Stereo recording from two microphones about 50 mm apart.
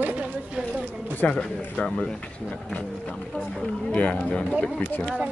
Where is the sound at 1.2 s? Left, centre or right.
Left.